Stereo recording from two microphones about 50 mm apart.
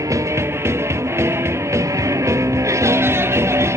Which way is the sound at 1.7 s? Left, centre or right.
Right.